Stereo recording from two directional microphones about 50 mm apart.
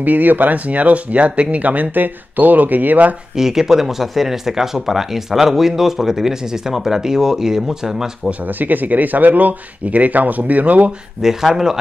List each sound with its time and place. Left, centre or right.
0.0 s speech: right
3.3 s speech: centre
8.3 s speech: right
11.2 s speech: centre